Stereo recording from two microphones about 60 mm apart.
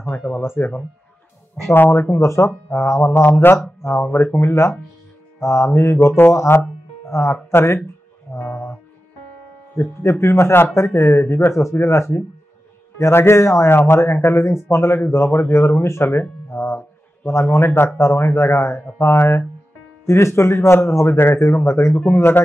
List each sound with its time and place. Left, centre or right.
0.4 s speech: left
7.1 s speech: left
9.8 s speech: left
21.9 s speech: left